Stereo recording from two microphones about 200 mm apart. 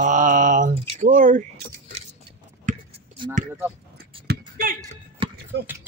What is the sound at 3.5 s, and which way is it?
Speech, 10° right (ahead or behind).